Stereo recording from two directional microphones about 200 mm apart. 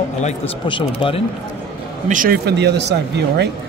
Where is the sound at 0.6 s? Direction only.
25° left (ahead or behind).